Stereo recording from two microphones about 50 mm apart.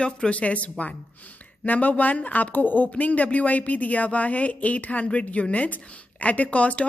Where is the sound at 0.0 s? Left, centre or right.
Left.